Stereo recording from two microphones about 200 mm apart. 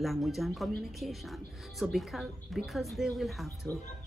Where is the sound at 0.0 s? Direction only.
Centre (ahead or behind).